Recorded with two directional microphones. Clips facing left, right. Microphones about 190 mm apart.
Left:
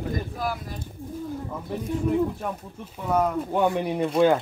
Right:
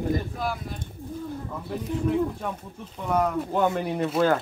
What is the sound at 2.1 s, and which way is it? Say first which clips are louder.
Speech: left 1 dB; 5° left (ahead or behind).